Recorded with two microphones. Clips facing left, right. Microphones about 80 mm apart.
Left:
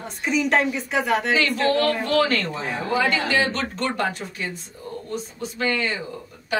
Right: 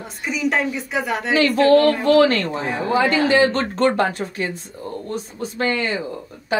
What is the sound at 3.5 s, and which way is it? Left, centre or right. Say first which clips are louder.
Speech: right 8 dB; right.